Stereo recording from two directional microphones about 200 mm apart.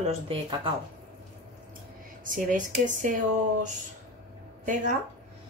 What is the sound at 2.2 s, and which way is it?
Speech, 40° right (ahead or behind).